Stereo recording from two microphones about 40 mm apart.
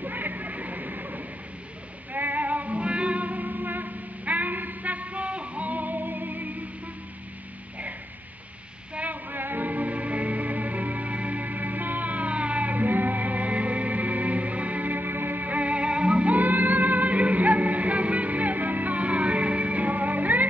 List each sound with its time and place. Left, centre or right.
0.0 s music: right
8.9 s a sound: right
9.4 s music: right